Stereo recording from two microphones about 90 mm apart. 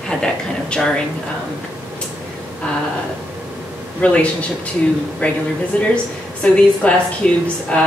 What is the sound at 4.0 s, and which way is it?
A woman's voice, 15° left (ahead or behind).